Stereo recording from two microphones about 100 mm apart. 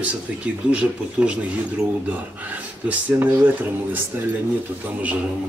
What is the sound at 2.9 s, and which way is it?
Speech, 15° right (ahead or behind).